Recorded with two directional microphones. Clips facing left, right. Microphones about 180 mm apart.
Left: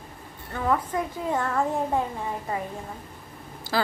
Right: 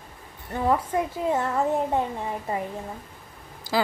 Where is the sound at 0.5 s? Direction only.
20° right (ahead or behind).